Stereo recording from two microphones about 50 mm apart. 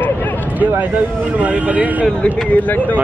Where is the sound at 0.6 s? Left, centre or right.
Right.